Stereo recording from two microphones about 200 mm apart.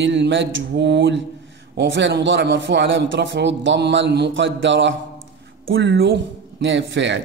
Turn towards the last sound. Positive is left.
turn(degrees=-65)  # may be behind; listen again after turning